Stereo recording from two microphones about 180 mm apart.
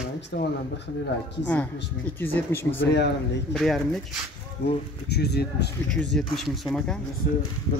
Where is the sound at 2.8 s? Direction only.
70° left (ahead or behind).